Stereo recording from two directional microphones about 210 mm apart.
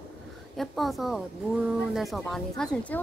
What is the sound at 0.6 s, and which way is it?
Speech, centre (ahead or behind).